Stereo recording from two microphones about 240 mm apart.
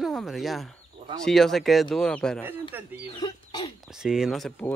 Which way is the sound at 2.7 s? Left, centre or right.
Centre.